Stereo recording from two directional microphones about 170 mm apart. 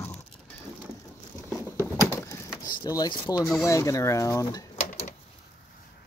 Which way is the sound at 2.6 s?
25° left (ahead or behind).